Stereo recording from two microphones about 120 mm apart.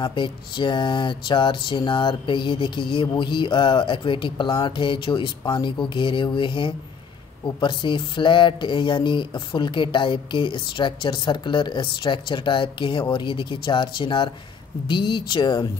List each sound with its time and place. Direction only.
0.0 s speech: 40° left (ahead or behind)